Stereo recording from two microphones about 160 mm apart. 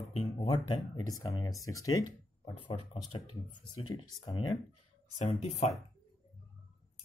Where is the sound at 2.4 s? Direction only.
35° left (ahead or behind).